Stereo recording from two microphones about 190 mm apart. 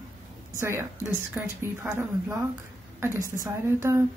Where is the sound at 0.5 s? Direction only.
15° right (ahead or behind).